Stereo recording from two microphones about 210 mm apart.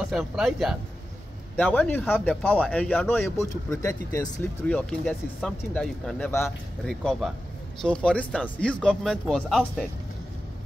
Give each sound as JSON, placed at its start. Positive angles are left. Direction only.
{"t": 0.1, "sound": "speech", "side_deg": 0}